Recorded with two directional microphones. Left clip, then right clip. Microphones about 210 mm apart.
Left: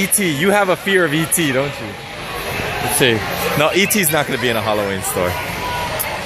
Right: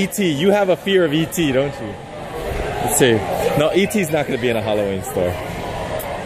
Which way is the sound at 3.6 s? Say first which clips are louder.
Left 2 dB; 15° right (ahead or behind).